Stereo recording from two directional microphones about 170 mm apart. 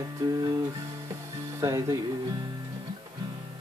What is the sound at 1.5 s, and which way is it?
Speech, 20° right (ahead or behind).